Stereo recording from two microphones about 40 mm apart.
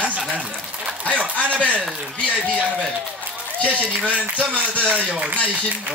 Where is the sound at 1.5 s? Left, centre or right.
Right.